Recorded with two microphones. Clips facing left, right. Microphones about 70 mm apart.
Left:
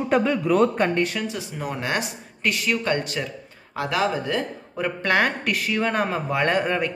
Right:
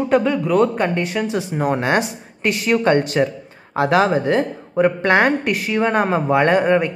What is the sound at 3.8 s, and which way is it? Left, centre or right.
Speech, right.